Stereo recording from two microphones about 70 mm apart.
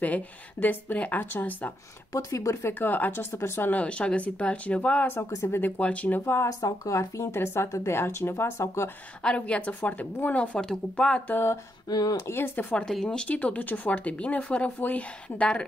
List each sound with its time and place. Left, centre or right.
0.0 s speech: left
2.1 s speech: left
2.8 s speech: left
3.7 s speech: centre
5.3 s speech: left
5.6 s speech: left
6.6 s speech: left
9.2 s speech: centre
11.2 s speech: left
11.9 s speech: left
12.3 s speech: left
12.7 s speech: centre
13.3 s speech: left